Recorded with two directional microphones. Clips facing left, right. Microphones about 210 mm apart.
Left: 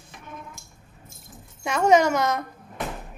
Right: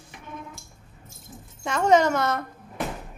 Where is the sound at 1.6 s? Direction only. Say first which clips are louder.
Left 1 dB; 10° left (ahead or behind).